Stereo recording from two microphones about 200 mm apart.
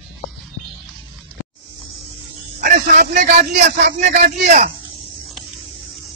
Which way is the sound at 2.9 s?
35° right (ahead or behind).